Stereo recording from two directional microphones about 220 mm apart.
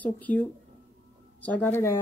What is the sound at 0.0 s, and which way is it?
Speech, 5° left (ahead or behind).